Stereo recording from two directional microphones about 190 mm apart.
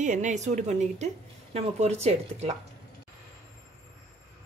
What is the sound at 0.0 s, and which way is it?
A woman's voice, 40° right (ahead or behind).